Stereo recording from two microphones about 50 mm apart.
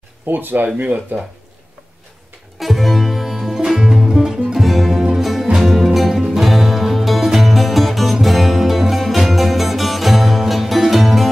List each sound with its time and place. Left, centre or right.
0.3 s speech: right
2.6 s music: centre